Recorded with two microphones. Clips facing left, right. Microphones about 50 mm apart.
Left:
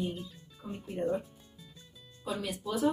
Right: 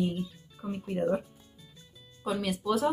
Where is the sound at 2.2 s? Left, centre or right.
Right.